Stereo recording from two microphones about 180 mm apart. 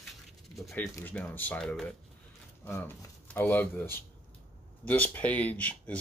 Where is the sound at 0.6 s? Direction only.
Centre (ahead or behind).